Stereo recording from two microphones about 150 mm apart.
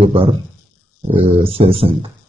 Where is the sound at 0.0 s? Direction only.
35° right (ahead or behind).